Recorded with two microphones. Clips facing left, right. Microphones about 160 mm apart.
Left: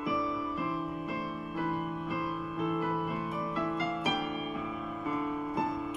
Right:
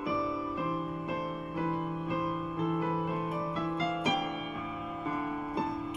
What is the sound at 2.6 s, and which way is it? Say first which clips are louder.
Music: even; 25° right (ahead or behind).